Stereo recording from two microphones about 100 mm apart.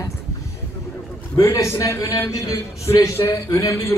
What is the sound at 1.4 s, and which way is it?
A man's voice, 30° left (ahead or behind).